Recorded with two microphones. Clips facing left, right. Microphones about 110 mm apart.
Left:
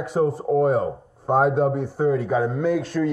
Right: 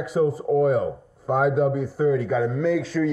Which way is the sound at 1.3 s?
40° left (ahead or behind).